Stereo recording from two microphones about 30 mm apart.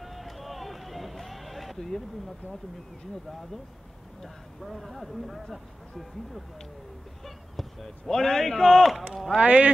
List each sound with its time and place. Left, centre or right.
0.0 s vehicle: centre
1.8 s a man's voice: centre
4.2 s speech: centre
7.2 s basketball bounce: centre
8.1 s a man's voice: centre
9.4 s speech: right